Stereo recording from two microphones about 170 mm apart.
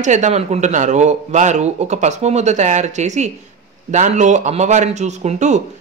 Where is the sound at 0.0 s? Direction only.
45° right (ahead or behind).